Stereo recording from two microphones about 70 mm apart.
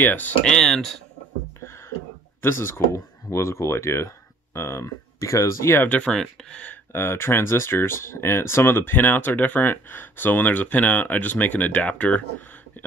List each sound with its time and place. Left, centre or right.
0.0 s speech: left
0.5 s speech: centre
2.4 s speech: left
5.9 s speech: centre
6.9 s speech: left; by 12.4 s centre